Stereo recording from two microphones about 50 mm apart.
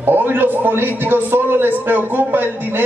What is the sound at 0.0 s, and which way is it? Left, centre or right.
A man's voice, right.